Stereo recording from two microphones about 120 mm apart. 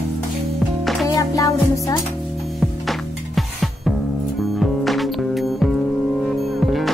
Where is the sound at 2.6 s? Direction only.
Centre (ahead or behind).